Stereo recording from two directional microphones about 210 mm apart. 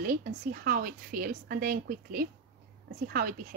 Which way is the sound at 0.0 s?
40° right (ahead or behind).